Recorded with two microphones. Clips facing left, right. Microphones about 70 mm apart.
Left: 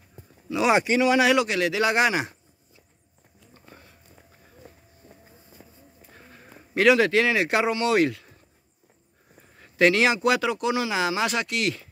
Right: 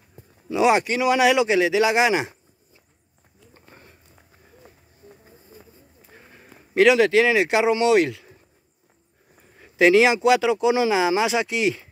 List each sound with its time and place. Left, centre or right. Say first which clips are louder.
0.7 s a man's voice: right 1 dB; centre
3.7 s run: even; right
6.1 s a sound: right 1 dB; centre
7.9 s a man's voice: right 3 dB; centre
9.6 s speech: right 4 dB; centre